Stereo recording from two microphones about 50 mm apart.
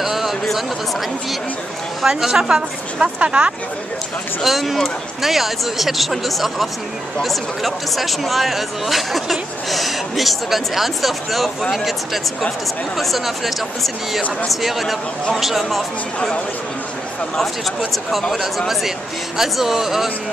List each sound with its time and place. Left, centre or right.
0.0 s a sound: centre
2.0 s a woman's voice: centre
4.4 s speech: centre
14.5 s speech: centre
18.7 s a woman's voice: centre